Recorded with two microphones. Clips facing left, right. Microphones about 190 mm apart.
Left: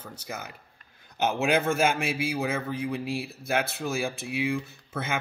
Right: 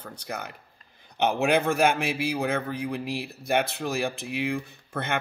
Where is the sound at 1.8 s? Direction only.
60° right (ahead or behind).